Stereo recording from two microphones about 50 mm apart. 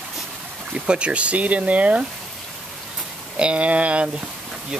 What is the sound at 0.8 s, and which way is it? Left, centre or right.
Speech, right.